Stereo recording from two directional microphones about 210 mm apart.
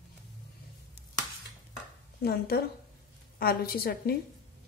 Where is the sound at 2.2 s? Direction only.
45° left (ahead or behind).